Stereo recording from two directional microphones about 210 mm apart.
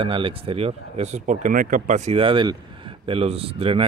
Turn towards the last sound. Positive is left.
turn(degrees=-25)  # may be behind; listen again after turning